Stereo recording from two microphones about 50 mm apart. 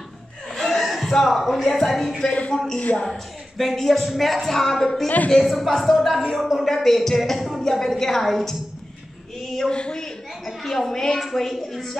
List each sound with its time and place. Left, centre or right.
0.5 s chuckle: centre
1.1 s speech: centre
2.2 s speech: left
3.1 s speech: centre
9.7 s a sound: centre
10.6 s speech: centre